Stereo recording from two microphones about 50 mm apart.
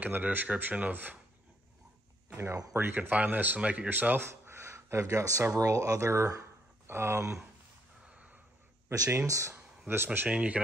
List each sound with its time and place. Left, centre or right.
0.0 s speech: right
2.3 s speech: right
2.9 s speech: right
4.5 s a sound: right
5.6 s speech: right
6.9 s speech: right
8.1 s a sound: right
8.8 s speech: right
9.8 s speech: right
10.2 s speech: right